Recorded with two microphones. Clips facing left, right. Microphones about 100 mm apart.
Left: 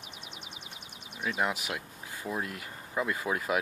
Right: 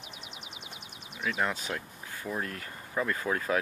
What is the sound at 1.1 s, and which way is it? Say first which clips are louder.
Speech: even; 20° left (ahead or behind).